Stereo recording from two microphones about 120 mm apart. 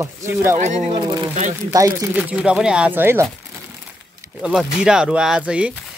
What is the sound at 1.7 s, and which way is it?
Speech, 30° right (ahead or behind).